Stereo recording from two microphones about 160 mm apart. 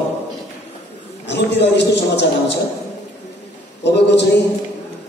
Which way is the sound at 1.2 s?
90° left.